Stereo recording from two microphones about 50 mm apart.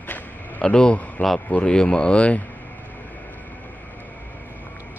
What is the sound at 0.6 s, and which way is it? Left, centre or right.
Speech, left.